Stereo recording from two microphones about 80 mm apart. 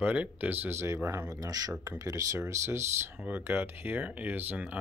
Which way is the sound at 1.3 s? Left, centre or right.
Right.